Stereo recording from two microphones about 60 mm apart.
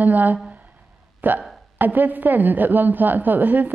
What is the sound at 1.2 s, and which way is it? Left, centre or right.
Hiccup, right.